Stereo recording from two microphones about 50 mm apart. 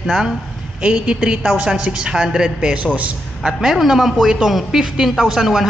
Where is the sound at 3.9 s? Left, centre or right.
Centre.